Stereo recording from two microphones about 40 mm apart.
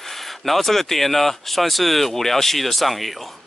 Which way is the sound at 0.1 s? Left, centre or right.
Centre.